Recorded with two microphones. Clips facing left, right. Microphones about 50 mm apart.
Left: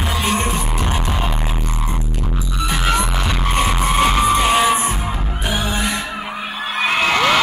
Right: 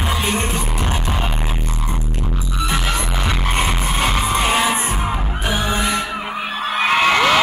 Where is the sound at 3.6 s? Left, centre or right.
Left.